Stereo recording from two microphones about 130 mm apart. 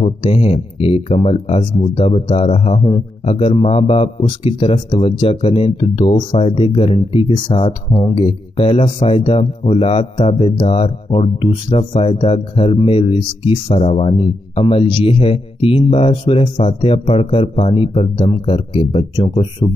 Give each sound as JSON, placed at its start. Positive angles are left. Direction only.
{"t": 0.0, "sound": "speech", "side_deg": 45}